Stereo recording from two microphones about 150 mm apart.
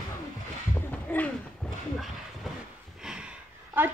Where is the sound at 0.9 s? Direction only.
10° left (ahead or behind).